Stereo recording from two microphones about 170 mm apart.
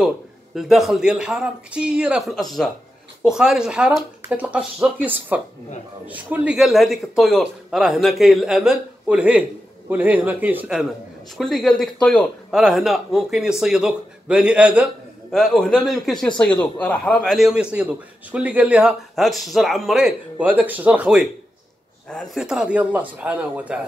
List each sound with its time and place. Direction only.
0.6 s a man's voice: centre (ahead or behind)